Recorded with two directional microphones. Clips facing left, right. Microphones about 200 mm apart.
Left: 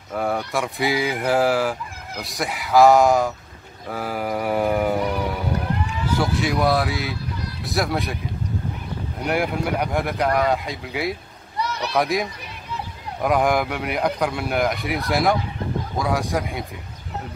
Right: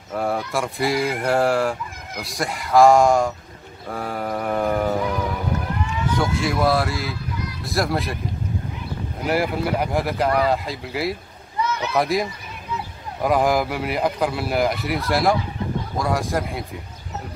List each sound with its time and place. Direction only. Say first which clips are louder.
0.1 s speech: even; centre (ahead or behind)
3.9 s mantra: left 1 dB; 5° left (ahead or behind)
6.1 s speech: left 1 dB; centre (ahead or behind)
9.2 s speech: right 1 dB; centre (ahead or behind)
11.6 s a sound: right 2 dB; 35° left (ahead or behind)
12.0 s speech: even; centre (ahead or behind)